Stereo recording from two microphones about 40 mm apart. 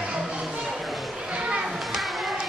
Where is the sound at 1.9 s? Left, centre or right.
Centre.